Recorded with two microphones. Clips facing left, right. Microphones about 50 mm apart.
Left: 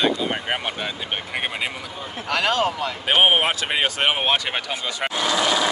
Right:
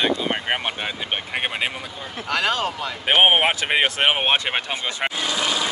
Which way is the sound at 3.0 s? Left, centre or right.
Centre.